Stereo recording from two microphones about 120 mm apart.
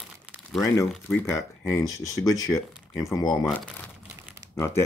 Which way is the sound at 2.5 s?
5° right (ahead or behind).